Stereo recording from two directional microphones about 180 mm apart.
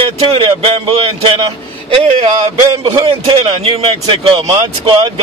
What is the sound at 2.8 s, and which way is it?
A man's voice, 30° right (ahead or behind).